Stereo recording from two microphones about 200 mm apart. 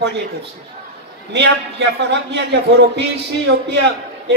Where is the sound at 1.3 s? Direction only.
60° right (ahead or behind).